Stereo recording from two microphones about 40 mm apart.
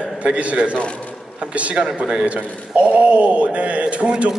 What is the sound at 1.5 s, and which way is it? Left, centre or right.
A man's voice, right.